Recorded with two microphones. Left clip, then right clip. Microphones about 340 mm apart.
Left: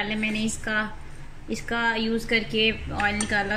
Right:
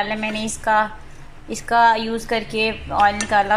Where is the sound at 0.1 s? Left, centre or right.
Right.